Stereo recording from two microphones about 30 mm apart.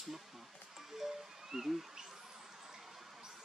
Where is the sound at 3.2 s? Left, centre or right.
Right.